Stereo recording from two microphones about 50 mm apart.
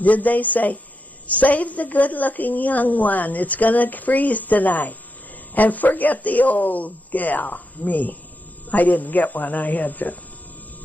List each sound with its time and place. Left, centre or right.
0.0 s a woman's voice: left